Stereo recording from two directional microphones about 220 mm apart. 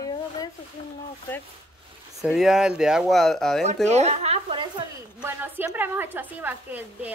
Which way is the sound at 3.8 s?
30° right (ahead or behind).